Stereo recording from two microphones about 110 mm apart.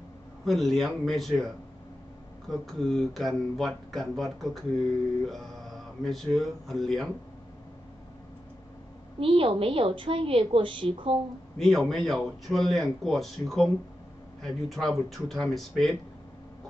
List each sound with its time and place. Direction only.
0.5 s speech: centre (ahead or behind)
2.5 s speech: centre (ahead or behind)
9.2 s a woman's voice: 55° right (ahead or behind)
11.5 s a man's voice: centre (ahead or behind)